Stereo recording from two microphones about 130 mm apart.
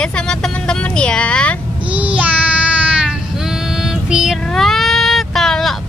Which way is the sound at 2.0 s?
10° right (ahead or behind).